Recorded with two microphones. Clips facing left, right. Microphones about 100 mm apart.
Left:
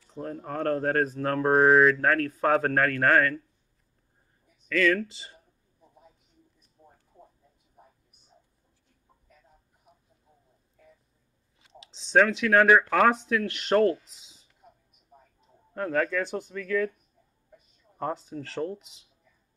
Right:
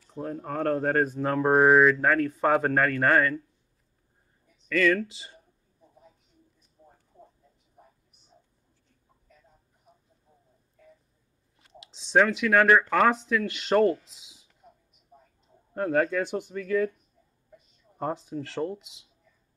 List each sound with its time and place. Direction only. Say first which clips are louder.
0.0 s speech: right 2 dB; 5° right (ahead or behind)
4.6 s speech: right 1 dB; centre (ahead or behind)
11.5 s speech: even; centre (ahead or behind)
15.7 s speech: right 2 dB; 15° right (ahead or behind)
17.9 s speech: right 1 dB; 15° right (ahead or behind)
18.3 s speech: right 1 dB; centre (ahead or behind)